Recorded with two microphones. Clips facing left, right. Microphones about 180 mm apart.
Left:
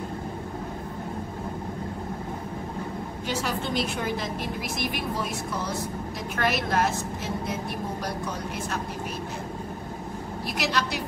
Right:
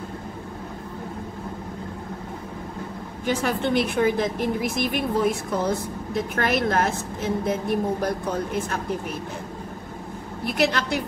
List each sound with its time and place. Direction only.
3.3 s a woman's voice: 55° right (ahead or behind)
10.4 s a woman's voice: 55° right (ahead or behind)